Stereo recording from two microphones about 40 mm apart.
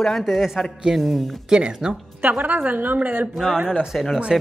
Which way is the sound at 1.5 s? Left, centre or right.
Right.